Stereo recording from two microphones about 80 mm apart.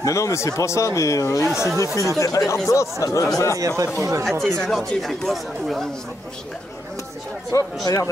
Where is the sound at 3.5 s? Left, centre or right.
Right.